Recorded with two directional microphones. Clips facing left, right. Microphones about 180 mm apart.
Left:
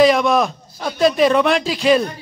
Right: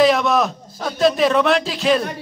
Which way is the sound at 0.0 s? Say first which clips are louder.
Left 2 dB; centre (ahead or behind).